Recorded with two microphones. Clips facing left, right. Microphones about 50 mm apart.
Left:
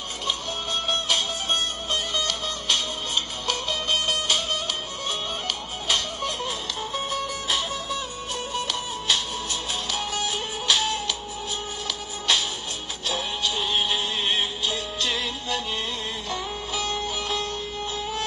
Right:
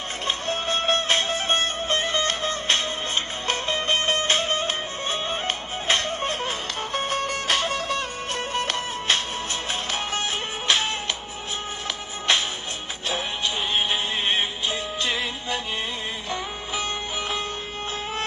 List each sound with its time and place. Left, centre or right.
0.3 s music: right
8.5 s music: right
12.3 s music: right